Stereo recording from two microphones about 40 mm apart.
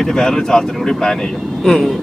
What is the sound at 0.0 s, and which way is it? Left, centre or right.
Speech, centre.